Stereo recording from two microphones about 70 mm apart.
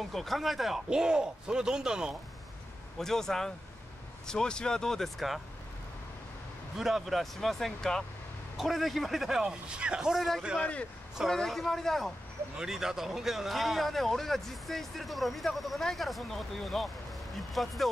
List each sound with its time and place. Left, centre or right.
0.0 s a man's voice: centre
3.0 s speech: centre
6.8 s speech: centre
10.6 s speech: centre
11.2 s speech: centre
12.5 s speech: centre